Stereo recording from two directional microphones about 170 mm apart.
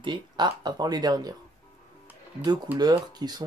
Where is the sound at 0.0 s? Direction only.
25° right (ahead or behind).